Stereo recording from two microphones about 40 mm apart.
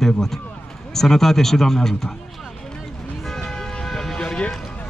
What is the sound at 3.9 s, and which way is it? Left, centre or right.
Vehicle, centre.